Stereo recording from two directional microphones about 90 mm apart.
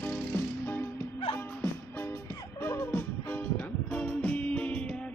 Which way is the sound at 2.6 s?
25° left (ahead or behind).